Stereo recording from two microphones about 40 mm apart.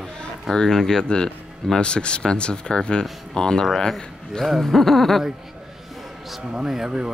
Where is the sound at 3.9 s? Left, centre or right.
Centre.